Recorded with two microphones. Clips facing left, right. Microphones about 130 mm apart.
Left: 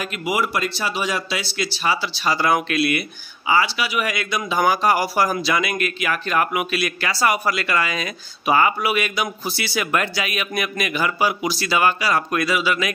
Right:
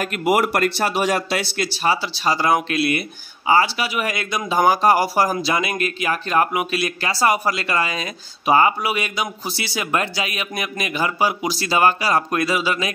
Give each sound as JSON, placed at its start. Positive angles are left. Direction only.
{"t": 0.0, "sound": "a man's voice", "side_deg": -50}